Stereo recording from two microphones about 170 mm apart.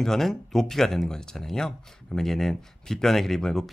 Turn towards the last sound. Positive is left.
turn(degrees=0)  # may be behind; listen again after turning